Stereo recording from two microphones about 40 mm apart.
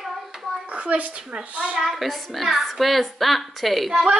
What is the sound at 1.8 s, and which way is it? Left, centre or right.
A woman's voice, centre.